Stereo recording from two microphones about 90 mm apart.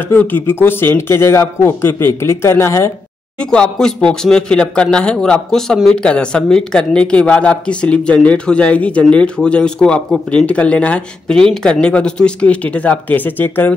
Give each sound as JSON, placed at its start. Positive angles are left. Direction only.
{"t": 0.1, "sound": "speech", "side_deg": 20}
{"t": 3.3, "sound": "speech", "side_deg": 10}